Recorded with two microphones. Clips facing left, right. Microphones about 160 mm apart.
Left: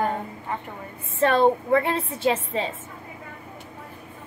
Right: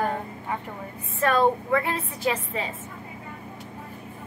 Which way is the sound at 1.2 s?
25° left (ahead or behind).